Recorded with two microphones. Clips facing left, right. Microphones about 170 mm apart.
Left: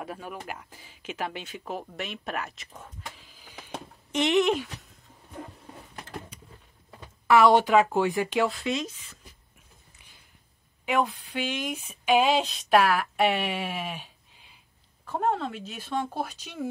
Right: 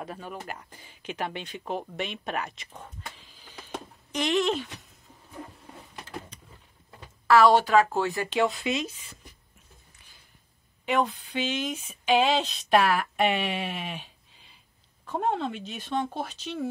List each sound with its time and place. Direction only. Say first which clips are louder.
0.0 s speech: even; 5° left (ahead or behind)
4.1 s a woman's voice: left 3 dB; 20° left (ahead or behind)
7.2 s a woman's voice: even; 20° left (ahead or behind)
8.5 s speech: even; 5° right (ahead or behind)
10.9 s speech: even; 10° left (ahead or behind)
15.0 s speech: even; centre (ahead or behind)